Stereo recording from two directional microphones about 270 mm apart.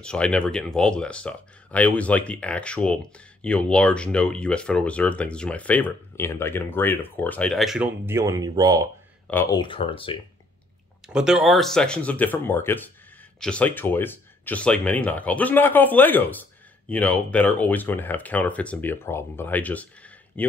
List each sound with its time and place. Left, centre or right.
0.0 s speech: centre
9.3 s speech: centre
11.1 s speech: centre